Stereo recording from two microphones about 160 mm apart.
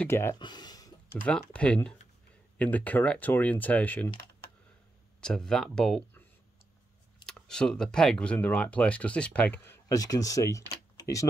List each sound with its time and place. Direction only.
0.0 s speech: 15° left (ahead or behind)
0.4 s a sound: 25° left (ahead or behind)
1.2 s speech: 5° left (ahead or behind)
5.2 s speech: 5° left (ahead or behind)
7.2 s speech: 5° left (ahead or behind)
9.8 s speech: 20° left (ahead or behind)
11.0 s typing: 20° left (ahead or behind)